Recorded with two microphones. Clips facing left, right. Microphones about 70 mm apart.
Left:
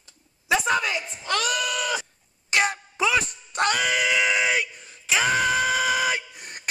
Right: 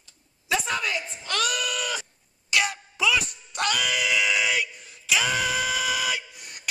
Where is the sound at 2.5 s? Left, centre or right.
Left.